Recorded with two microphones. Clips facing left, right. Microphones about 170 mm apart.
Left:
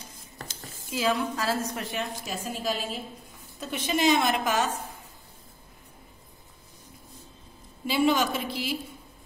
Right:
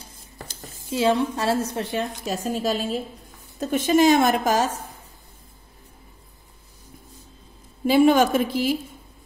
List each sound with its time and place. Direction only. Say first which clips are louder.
0.8 s a woman's voice: right 6 dB; 25° right (ahead or behind)
2.5 s a woman's voice: right 6 dB; 40° right (ahead or behind)
7.8 s a woman's voice: right 8 dB; 50° right (ahead or behind)